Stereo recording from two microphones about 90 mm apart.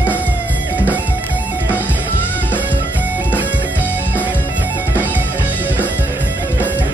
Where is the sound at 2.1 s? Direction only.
20° left (ahead or behind).